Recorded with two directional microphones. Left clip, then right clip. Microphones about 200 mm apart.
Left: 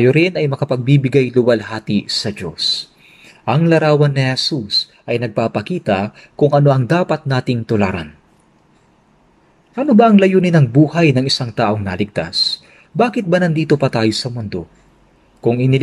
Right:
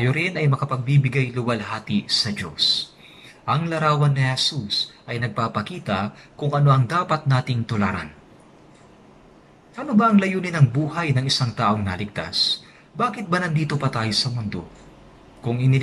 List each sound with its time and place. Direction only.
0.0 s a man's voice: 50° left (ahead or behind)
9.8 s a man's voice: 45° left (ahead or behind)